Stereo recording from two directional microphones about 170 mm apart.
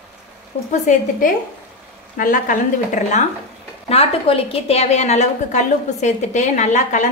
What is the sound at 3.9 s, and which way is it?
A woman's voice, 35° left (ahead or behind).